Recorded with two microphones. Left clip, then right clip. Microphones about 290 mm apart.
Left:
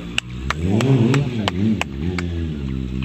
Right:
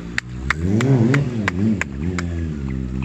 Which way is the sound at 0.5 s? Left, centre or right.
Centre.